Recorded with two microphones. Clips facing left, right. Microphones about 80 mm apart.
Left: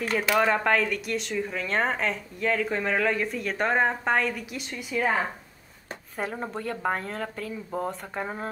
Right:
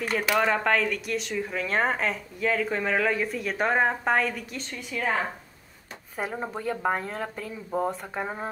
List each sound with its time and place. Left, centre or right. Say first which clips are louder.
0.0 s speech: left 1 dB; centre
6.1 s speech: even; centre